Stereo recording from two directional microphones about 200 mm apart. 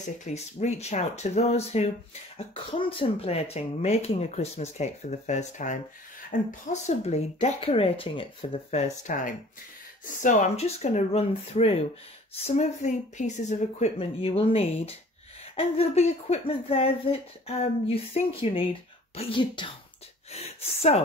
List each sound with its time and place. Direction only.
0.2 s speech: 35° left (ahead or behind)